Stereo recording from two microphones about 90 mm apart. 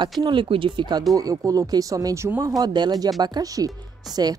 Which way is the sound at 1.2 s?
40° right (ahead or behind).